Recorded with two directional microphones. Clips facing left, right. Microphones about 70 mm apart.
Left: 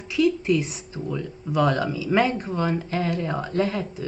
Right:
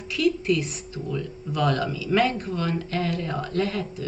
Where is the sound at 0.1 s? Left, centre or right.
Left.